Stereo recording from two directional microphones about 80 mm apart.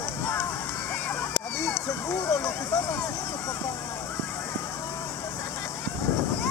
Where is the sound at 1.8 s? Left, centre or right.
Left.